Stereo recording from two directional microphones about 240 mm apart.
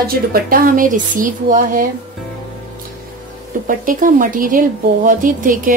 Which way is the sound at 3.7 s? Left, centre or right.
Right.